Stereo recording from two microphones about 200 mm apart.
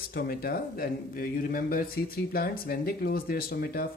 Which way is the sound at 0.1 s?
50° left (ahead or behind).